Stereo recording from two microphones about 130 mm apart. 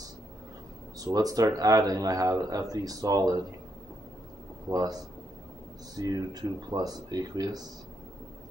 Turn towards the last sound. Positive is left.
turn(degrees=-30)  # may be behind; listen again after turning